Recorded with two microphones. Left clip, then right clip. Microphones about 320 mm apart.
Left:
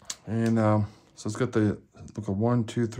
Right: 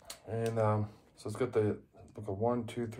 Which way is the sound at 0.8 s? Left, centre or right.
Left.